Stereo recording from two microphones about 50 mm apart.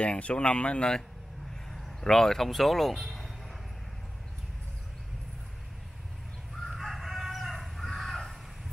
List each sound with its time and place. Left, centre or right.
0.0 s speech: left
1.7 s speech: centre
6.6 s chicken: centre